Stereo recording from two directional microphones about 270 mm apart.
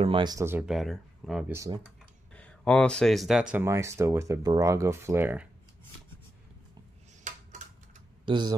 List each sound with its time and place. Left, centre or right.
0.0 s speech: centre
8.3 s speech: centre